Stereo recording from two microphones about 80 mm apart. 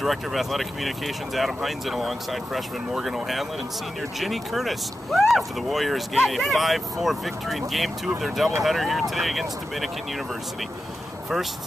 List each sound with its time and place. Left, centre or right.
0.0 s speech: centre